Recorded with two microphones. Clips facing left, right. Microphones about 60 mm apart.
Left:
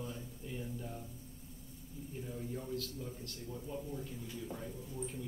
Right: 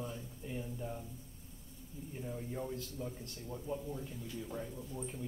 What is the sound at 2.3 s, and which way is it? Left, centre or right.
Speech, right.